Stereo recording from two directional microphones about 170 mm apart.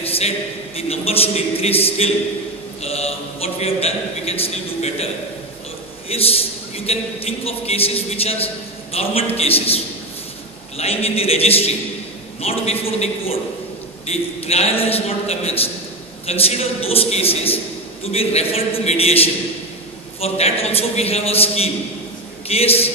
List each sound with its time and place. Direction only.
0.0 s a sound: 35° left (ahead or behind)
0.7 s a man's voice: 35° left (ahead or behind)
10.8 s a man's voice: 35° left (ahead or behind)